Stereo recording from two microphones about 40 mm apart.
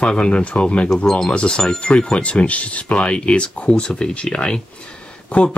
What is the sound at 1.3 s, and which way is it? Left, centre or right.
Speech, left.